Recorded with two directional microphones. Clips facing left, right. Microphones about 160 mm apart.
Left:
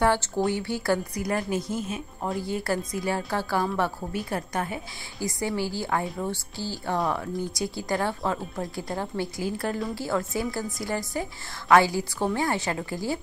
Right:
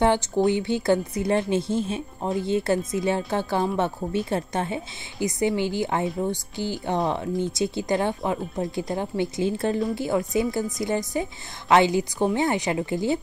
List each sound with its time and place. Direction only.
0.5 s speech: 20° right (ahead or behind)